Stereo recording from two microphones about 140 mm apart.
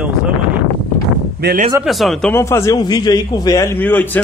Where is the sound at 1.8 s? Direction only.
Centre (ahead or behind).